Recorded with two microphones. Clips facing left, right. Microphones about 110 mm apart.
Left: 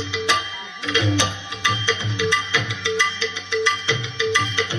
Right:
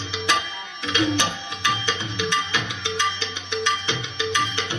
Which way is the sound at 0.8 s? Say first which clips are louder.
Left 1 dB; 20° right (ahead or behind).